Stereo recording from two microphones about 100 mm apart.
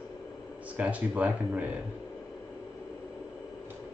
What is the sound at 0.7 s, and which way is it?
Speech, 15° right (ahead or behind).